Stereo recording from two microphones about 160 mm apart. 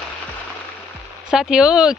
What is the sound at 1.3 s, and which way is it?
Speech, 5° right (ahead or behind).